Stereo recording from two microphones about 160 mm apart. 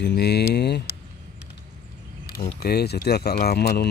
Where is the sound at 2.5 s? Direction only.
85° left.